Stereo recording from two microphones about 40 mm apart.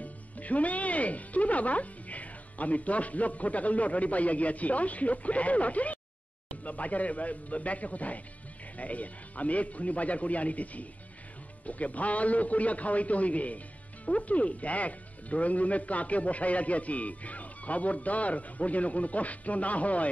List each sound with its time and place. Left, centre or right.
0.0 s speech: left